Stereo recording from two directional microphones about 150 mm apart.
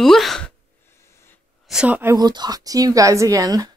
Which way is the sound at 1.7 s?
5° right (ahead or behind).